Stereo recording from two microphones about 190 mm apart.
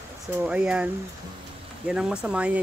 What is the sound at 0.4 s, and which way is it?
Speech, 5° right (ahead or behind).